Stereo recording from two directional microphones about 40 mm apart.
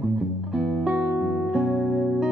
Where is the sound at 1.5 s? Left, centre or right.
Centre.